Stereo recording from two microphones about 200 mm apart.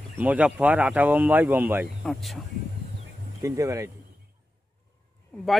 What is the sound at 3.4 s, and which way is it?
Speech, 15° right (ahead or behind).